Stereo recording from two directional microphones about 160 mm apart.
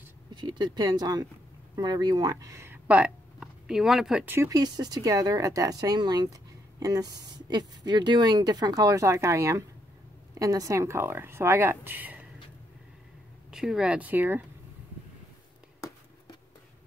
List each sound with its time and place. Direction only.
0.3 s speech: 25° right (ahead or behind); by 4.2 s centre (ahead or behind)
4.3 s speech: 20° right (ahead or behind)
13.5 s speech: 5° right (ahead or behind)